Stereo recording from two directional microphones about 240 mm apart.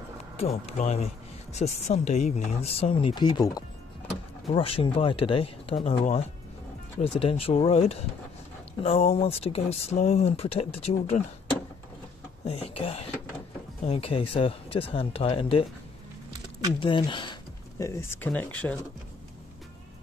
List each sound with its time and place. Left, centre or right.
0.4 s speech: left
12.4 s speech: left
16.8 s speech: centre